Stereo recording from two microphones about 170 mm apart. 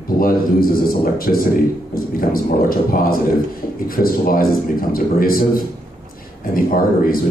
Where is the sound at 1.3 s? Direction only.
50° left (ahead or behind).